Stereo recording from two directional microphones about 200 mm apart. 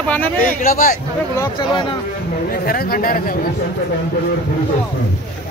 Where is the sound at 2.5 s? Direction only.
50° left (ahead or behind).